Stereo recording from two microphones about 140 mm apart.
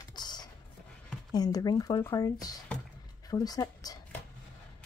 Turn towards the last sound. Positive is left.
turn(degrees=25)  # may be behind; listen again after turning